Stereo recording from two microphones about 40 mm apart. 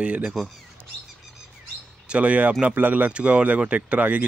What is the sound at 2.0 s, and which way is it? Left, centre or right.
Speech, right.